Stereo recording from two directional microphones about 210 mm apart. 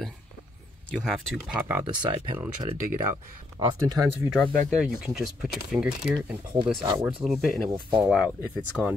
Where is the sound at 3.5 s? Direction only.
20° right (ahead or behind).